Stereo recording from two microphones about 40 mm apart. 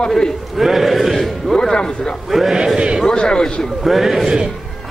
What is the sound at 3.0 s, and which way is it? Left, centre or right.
Speech, centre.